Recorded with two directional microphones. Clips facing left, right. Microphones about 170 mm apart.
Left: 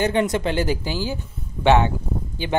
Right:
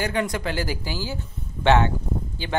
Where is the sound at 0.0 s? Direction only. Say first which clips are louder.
Left 5 dB; 25° left (ahead or behind).